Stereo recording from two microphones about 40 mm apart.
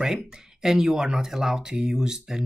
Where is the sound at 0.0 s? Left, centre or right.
Centre.